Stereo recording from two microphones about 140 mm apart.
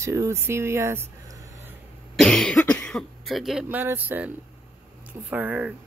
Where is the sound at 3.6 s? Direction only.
15° right (ahead or behind).